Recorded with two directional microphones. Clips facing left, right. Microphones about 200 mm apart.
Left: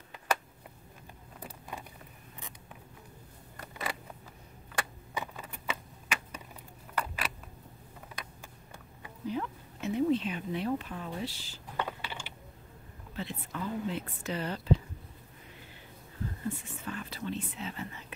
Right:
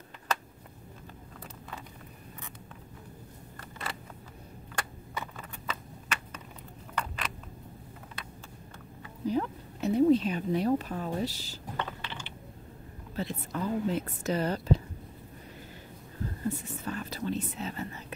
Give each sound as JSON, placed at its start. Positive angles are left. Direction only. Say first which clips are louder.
{"t": 4.7, "sound": "a sound", "louder": "left 1 dB", "side_deg": 10}
{"t": 9.3, "sound": "speech", "louder": "right 5 dB", "side_deg": -35}
{"t": 11.7, "sound": "typing", "louder": "left 1 dB", "side_deg": 10}
{"t": 13.1, "sound": "speech", "louder": "right 5 dB", "side_deg": -40}
{"t": 16.4, "sound": "speech", "louder": "right 5 dB", "side_deg": -40}